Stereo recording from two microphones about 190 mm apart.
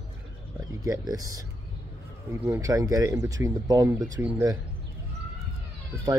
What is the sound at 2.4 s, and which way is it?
Speech, 15° right (ahead or behind).